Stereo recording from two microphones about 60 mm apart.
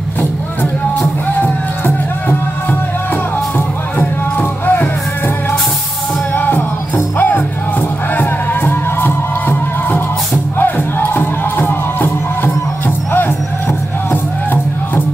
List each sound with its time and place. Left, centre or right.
0.2 s music: left
6.3 s music: left